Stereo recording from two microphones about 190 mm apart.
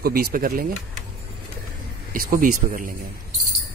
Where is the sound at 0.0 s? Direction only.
50° right (ahead or behind).